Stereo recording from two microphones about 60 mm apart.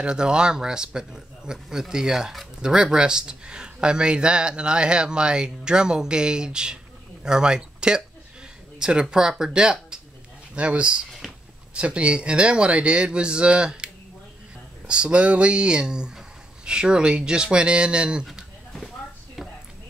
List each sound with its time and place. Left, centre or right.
0.0 s a man's voice: centre
8.7 s a sound: centre
9.1 s a man's voice: centre
14.9 s a man's voice: centre